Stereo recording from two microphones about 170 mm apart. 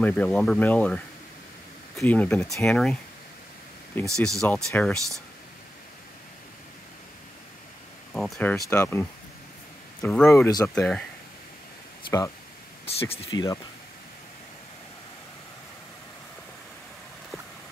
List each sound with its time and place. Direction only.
0.0 s speech: 10° left (ahead or behind)
8.1 s speech: 5° left (ahead or behind)
10.0 s speech: 5° left (ahead or behind)
10.3 s speech: 20° left (ahead or behind)
10.7 s speech: 5° left (ahead or behind)
12.8 s speech: 35° left (ahead or behind)